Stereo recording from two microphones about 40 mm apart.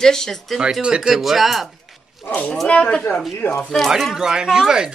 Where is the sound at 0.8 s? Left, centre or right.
Right.